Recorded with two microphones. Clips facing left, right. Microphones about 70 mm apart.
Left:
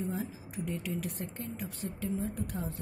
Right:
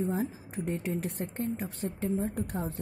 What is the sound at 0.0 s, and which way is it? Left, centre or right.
Speech, right.